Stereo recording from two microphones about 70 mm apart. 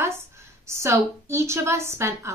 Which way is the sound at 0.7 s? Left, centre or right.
Right.